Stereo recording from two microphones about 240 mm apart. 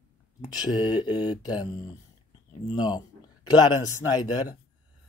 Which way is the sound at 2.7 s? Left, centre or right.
Centre.